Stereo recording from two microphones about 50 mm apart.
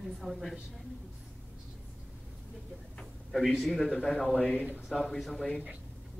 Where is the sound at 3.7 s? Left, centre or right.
Centre.